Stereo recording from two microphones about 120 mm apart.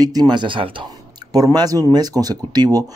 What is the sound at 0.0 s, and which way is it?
Speech, 35° right (ahead or behind).